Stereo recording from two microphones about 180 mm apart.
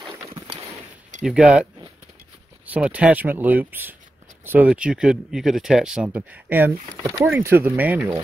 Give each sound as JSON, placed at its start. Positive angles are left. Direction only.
{"t": 1.2, "sound": "speech", "side_deg": -5}
{"t": 7.0, "sound": "speech", "side_deg": -25}
{"t": 7.2, "sound": "speech", "side_deg": -10}